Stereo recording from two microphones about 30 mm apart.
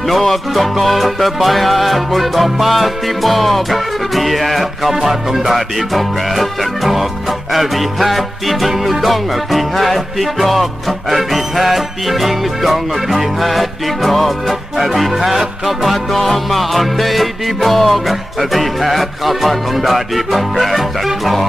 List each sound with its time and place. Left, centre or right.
0.1 s speech: centre
4.9 s music: centre
5.4 s speech: centre